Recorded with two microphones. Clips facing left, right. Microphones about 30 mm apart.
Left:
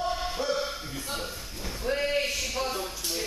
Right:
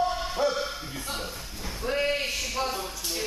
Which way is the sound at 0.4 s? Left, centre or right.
Right.